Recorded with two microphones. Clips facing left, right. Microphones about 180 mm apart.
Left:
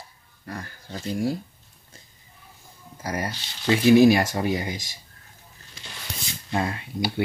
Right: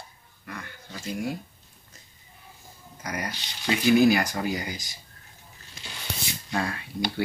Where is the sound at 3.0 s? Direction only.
30° left (ahead or behind).